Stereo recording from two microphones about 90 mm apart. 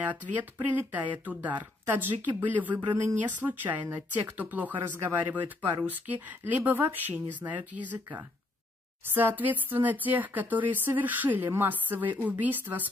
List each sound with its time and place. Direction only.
0.7 s a woman's voice: 20° right (ahead or behind)